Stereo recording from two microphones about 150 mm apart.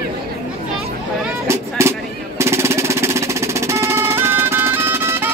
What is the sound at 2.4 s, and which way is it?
Music, 15° right (ahead or behind).